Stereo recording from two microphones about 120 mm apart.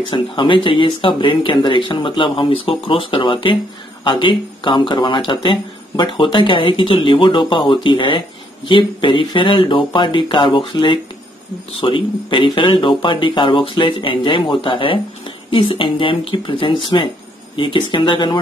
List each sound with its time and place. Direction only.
0.0 s speech: 45° left (ahead or behind)